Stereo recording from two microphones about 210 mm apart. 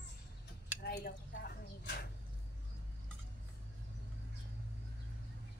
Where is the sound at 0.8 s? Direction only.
45° left (ahead or behind).